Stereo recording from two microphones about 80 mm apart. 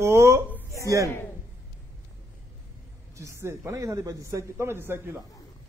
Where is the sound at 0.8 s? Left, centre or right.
Right.